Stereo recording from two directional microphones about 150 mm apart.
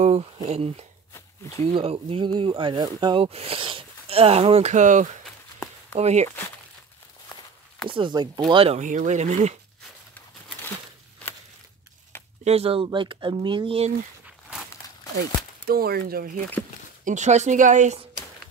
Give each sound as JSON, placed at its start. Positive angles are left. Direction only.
{"t": 0.5, "sound": "speech", "side_deg": -40}
{"t": 7.9, "sound": "speech", "side_deg": -30}
{"t": 8.7, "sound": "speech", "side_deg": -55}
{"t": 12.4, "sound": "speech", "side_deg": -40}
{"t": 15.6, "sound": "speech", "side_deg": -90}
{"t": 17.0, "sound": "speech", "side_deg": -55}